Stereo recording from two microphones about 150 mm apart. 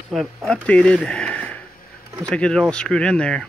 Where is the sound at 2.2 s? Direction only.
5° left (ahead or behind).